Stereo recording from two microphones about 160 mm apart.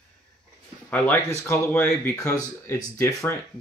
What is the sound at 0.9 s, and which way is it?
Speech, 15° left (ahead or behind).